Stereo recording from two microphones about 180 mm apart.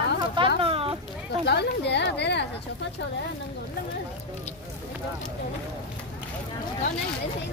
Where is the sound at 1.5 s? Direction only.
70° left (ahead or behind).